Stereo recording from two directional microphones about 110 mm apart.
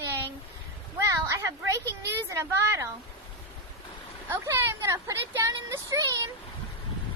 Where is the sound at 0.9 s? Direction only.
25° right (ahead or behind).